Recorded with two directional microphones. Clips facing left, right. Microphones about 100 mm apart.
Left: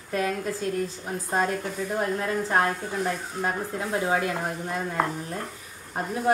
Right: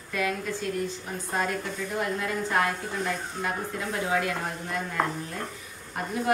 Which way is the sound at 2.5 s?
35° left (ahead or behind).